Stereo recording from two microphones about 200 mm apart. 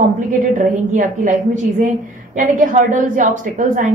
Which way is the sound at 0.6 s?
40° right (ahead or behind).